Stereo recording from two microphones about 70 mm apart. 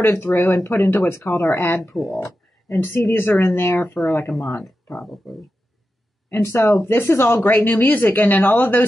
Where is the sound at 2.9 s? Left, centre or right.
Left.